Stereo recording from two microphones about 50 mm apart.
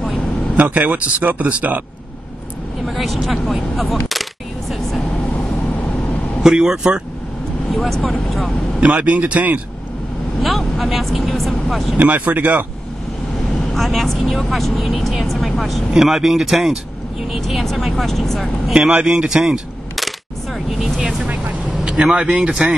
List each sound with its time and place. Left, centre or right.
0.6 s speech: right
2.8 s single-lens reflex camera: centre
6.4 s speech: centre
8.8 s speech: right
10.8 s speech: centre
12.0 s speech: right
13.7 s speech: centre
18.7 s speech: centre
20.0 s single-lens reflex camera: centre
21.0 s speech: centre
21.6 s vehicle: centre
22.1 s speech: centre